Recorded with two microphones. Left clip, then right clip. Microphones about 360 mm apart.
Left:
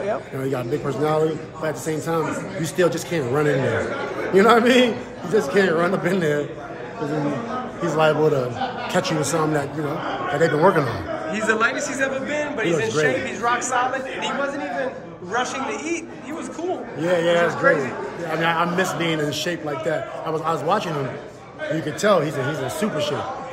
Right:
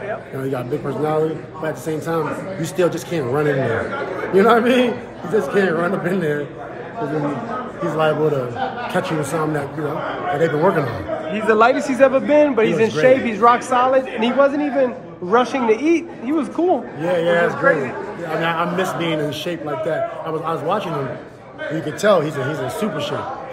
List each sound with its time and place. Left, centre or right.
0.5 s a man's voice: centre
7.8 s speech: centre
10.4 s a man's voice: centre
11.9 s a man's voice: centre
17.0 s a man's voice: centre